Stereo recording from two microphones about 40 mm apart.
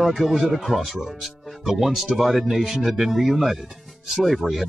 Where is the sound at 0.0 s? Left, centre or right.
Centre.